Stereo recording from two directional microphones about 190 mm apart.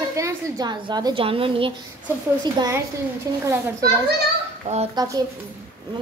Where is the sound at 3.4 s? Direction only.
15° right (ahead or behind).